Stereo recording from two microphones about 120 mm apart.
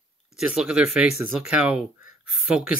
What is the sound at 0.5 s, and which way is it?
Speech, 10° right (ahead or behind).